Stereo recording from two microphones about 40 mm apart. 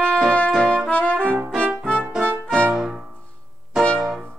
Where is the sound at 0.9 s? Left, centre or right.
Left.